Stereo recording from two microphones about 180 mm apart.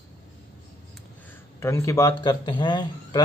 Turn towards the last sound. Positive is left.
turn(degrees=25)  # may be behind; listen again after turning